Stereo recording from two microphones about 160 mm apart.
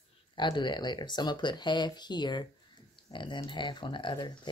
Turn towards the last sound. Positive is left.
turn(degrees=30)  # may be behind; listen again after turning